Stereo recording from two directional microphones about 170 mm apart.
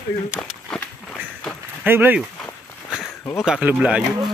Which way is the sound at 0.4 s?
5° left (ahead or behind).